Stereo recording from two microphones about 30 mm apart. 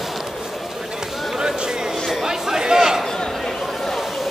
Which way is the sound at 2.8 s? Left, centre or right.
Centre.